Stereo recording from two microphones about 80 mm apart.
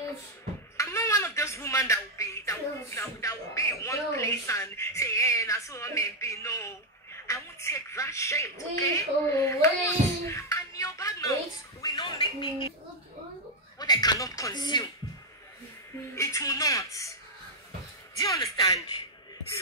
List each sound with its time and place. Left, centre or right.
0.7 s speech: left
11.8 s a sound: left
13.7 s speech: left
16.2 s a man's voice: left
18.3 s a man's voice: left